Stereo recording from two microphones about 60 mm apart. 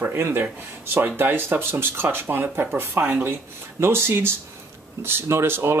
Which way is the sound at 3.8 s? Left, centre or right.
Right.